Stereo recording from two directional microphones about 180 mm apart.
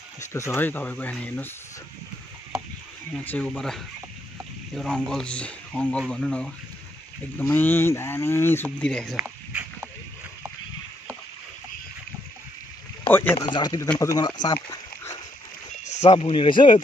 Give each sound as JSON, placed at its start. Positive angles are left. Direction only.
{"t": 0.2, "sound": "speech", "side_deg": 15}
{"t": 3.3, "sound": "speech", "side_deg": 10}
{"t": 9.1, "sound": "a sound", "side_deg": -10}
{"t": 13.1, "sound": "speech", "side_deg": 10}
{"t": 13.4, "sound": "speech", "side_deg": 25}
{"t": 15.8, "sound": "a sound", "side_deg": 40}
{"t": 16.1, "sound": "speech", "side_deg": 30}